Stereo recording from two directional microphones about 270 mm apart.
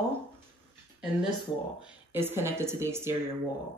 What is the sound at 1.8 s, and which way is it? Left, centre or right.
Speech, centre.